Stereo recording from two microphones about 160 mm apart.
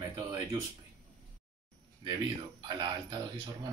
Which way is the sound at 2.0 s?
30° right (ahead or behind).